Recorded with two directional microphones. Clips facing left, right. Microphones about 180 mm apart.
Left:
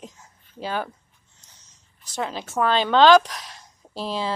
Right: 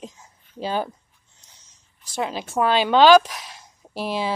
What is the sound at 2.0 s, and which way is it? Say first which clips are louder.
Speech: right 2 dB; 10° right (ahead or behind).